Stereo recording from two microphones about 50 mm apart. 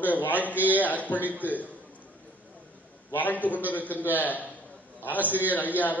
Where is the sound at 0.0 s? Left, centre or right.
Left.